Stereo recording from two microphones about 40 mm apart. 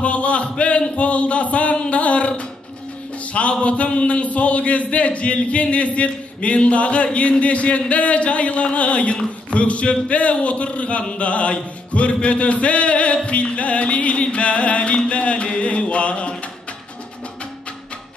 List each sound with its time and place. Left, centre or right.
0.0 s a man's voice: left